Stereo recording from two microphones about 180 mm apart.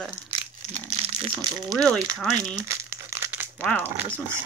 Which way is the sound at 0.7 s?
35° right (ahead or behind).